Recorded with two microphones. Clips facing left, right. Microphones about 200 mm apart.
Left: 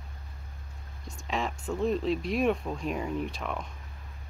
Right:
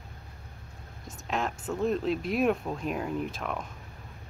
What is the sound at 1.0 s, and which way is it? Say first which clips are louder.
Speech: right 1 dB; centre (ahead or behind).